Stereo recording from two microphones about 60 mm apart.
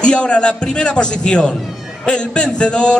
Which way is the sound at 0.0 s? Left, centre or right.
Centre.